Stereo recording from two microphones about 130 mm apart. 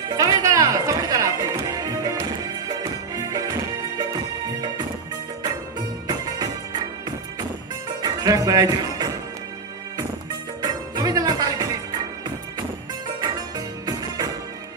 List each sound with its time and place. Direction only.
0.1 s music: 30° right (ahead or behind)
6.0 s music: 30° right (ahead or behind)
10.6 s music: 30° right (ahead or behind)
13.2 s music: 30° right (ahead or behind)